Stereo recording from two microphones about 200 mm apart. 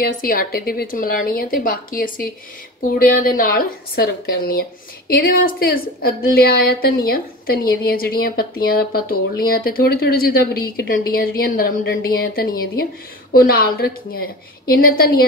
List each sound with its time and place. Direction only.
0.2 s a woman's voice: 45° left (ahead or behind)